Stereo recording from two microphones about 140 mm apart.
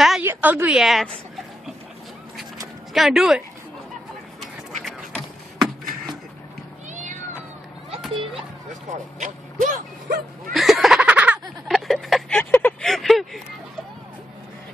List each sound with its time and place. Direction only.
0.2 s a woman's voice: 15° right (ahead or behind)
2.9 s speech: centre (ahead or behind)
4.4 s a sound: centre (ahead or behind)
6.9 s cat: 60° right (ahead or behind)
8.9 s speech: 60° right (ahead or behind); by 10.2 s 75° right (ahead or behind)
10.5 s giggle: centre (ahead or behind)
11.6 s a sound: centre (ahead or behind)
12.4 s speech: 10° left (ahead or behind)
12.8 s speech: centre (ahead or behind)